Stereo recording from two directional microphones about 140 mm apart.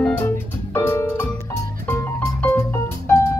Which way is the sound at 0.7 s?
15° left (ahead or behind).